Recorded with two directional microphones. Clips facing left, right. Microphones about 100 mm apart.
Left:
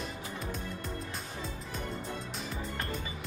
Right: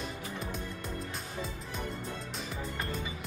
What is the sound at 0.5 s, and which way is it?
Music, centre (ahead or behind).